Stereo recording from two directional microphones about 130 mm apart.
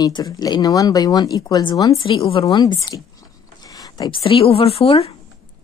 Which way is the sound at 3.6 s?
30° left (ahead or behind).